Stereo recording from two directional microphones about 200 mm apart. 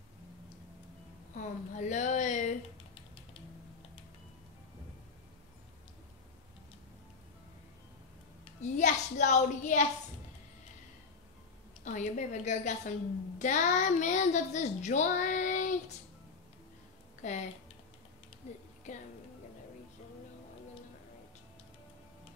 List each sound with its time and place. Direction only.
1.3 s a child's voice: 35° left (ahead or behind)
8.7 s a woman's voice: 35° left (ahead or behind)
11.8 s a child's voice: 35° left (ahead or behind)
17.2 s speech: 35° left (ahead or behind)